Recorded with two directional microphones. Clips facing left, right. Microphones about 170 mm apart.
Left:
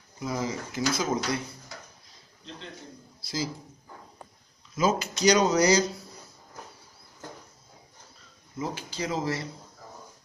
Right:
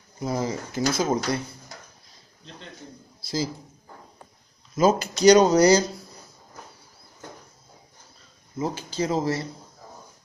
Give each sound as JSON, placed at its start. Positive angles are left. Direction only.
{"t": 0.2, "sound": "speech", "side_deg": -35}
{"t": 4.7, "sound": "speech", "side_deg": -40}
{"t": 8.5, "sound": "speech", "side_deg": -25}